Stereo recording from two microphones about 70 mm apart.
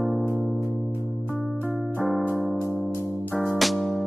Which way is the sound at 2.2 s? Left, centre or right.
Centre.